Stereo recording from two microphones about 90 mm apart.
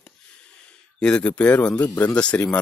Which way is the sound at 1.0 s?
10° left (ahead or behind).